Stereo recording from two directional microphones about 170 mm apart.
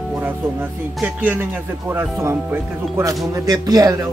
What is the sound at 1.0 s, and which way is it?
Speech, 10° right (ahead or behind).